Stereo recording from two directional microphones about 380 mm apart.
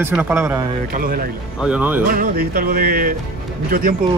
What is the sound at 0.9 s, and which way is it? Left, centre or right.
Music, right.